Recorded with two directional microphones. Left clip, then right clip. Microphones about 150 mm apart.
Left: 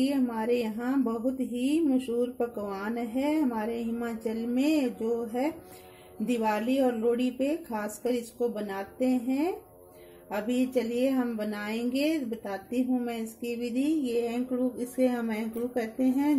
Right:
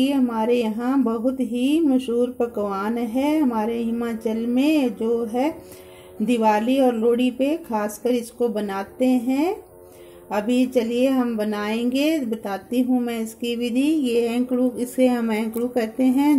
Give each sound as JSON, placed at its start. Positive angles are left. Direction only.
{"t": 0.0, "sound": "a woman's voice", "side_deg": -20}